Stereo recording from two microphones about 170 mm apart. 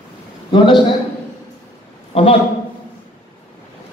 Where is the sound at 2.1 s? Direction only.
35° left (ahead or behind).